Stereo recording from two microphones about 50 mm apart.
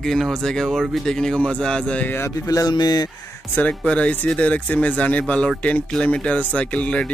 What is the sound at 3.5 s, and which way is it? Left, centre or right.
Speech, left.